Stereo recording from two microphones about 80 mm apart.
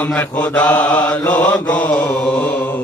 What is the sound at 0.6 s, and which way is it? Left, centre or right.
Mantra, centre.